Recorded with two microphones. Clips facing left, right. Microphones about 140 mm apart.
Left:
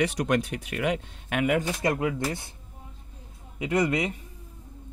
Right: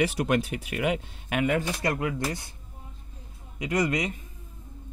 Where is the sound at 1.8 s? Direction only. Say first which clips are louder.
Left 2 dB; 20° left (ahead or behind).